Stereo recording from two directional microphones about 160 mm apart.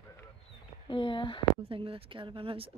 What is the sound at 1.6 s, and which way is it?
A woman's voice, 35° right (ahead or behind).